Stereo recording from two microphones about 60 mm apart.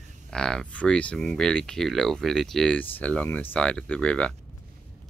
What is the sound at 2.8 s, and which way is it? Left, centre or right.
Speech, left.